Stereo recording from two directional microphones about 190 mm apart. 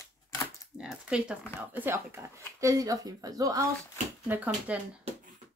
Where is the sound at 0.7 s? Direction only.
5° right (ahead or behind).